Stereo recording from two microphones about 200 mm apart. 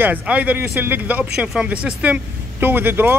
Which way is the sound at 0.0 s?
10° right (ahead or behind).